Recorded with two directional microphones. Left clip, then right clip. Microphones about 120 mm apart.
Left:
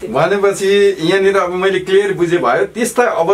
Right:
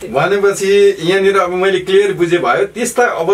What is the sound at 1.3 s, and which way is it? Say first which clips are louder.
A man's voice: right 1 dB; 20° left (ahead or behind).